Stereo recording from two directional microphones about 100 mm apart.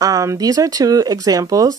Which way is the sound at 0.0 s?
35° right (ahead or behind).